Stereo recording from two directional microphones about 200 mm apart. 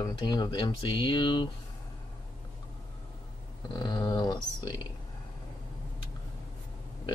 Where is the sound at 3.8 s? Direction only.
20° left (ahead or behind).